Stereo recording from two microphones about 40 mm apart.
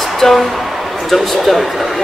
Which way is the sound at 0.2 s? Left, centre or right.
Centre.